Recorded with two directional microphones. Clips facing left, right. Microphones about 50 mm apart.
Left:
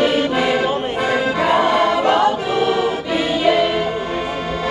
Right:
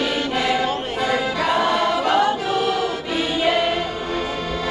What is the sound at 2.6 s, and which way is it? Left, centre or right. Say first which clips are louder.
Accordion: left 4 dB; left.